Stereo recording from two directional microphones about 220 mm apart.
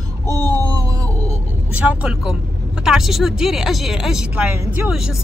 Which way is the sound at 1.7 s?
5° right (ahead or behind).